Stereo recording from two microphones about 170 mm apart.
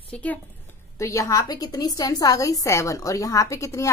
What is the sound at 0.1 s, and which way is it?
A woman's voice, 10° left (ahead or behind).